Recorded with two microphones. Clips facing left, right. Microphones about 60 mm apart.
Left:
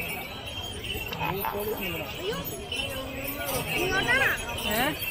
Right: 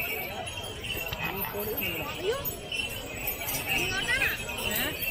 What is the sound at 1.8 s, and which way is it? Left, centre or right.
Speech, centre.